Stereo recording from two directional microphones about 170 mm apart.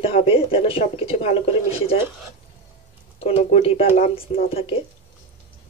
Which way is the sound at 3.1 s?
40° left (ahead or behind).